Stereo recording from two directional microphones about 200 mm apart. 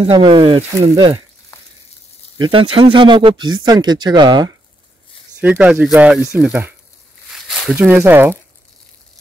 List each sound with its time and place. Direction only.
0.0 s speech: 25° right (ahead or behind)
2.3 s speech: 25° right (ahead or behind)
5.4 s speech: 5° right (ahead or behind)